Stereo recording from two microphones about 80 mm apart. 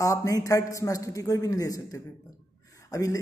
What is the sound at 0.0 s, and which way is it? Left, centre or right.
Speech, left.